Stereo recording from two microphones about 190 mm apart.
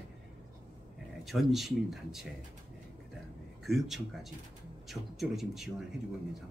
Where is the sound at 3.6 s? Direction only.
Centre (ahead or behind).